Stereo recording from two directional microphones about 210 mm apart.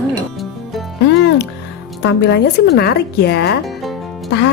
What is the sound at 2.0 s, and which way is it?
Speech, 55° left (ahead or behind).